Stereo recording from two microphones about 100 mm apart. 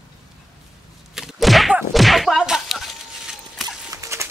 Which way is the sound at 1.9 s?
Centre (ahead or behind).